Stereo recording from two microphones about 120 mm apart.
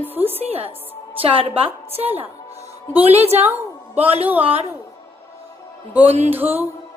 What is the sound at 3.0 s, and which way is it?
Speech, 60° right (ahead or behind).